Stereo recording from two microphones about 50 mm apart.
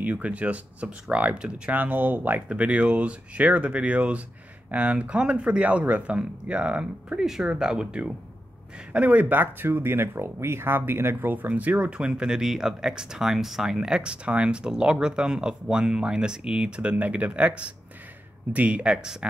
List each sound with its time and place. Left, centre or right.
0.0 s speech: right
1.8 s speech: right
2.4 s speech: right
7.2 s speech: centre
8.9 s speech: right
9.8 s speech: right
12.0 s speech: centre
13.7 s speech: centre